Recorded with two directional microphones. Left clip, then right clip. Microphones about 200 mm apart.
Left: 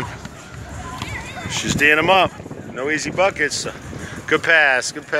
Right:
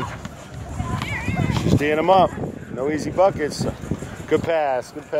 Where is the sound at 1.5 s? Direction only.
10° right (ahead or behind).